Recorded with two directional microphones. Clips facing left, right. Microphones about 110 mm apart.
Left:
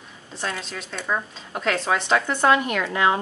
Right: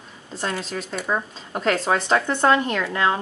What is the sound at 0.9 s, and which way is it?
Speech, 10° right (ahead or behind).